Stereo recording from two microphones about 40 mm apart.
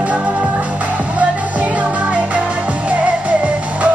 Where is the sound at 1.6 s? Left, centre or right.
Right.